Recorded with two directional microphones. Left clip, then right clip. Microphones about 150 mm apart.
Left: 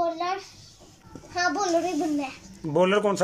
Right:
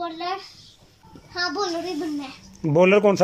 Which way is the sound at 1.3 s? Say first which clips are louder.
Even; 20° left (ahead or behind).